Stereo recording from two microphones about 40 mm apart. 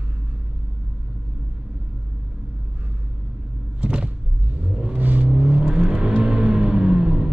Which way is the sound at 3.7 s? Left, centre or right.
Right.